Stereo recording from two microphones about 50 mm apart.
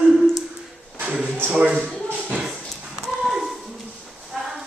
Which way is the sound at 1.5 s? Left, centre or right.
Right.